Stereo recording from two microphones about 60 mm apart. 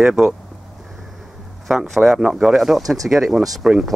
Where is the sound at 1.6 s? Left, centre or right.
Centre.